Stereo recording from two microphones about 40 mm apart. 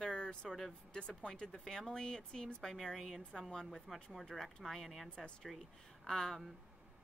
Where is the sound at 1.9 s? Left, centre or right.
Centre.